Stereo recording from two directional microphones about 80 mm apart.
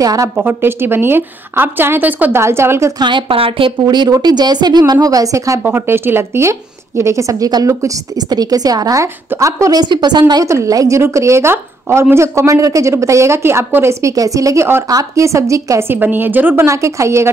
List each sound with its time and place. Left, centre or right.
0.0 s a woman's voice: right
0.4 s a woman's voice: right
2.3 s a woman's voice: right
3.0 s speech: right
3.9 s a woman's voice: right
5.6 s a woman's voice: right
9.0 s a woman's voice: right
9.8 s a woman's voice: right
10.4 s a woman's voice: right
14.0 s a woman's voice: right
15.9 s a woman's voice: right
16.6 s a woman's voice: right